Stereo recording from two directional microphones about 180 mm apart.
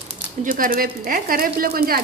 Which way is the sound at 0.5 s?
50° right (ahead or behind).